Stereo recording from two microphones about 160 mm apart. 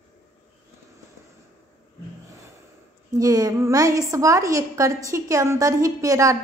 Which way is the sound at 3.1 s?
20° right (ahead or behind).